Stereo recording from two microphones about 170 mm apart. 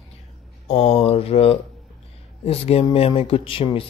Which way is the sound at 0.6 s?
35° left (ahead or behind).